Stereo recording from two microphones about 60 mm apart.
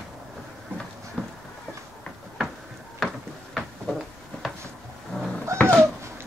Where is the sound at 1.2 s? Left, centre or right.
Centre.